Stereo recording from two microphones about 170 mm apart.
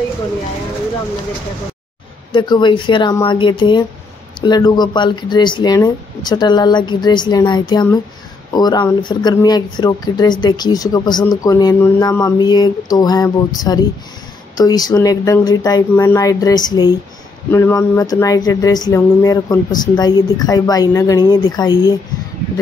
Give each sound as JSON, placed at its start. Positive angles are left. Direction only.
{"t": 2.3, "sound": "speech", "side_deg": 25}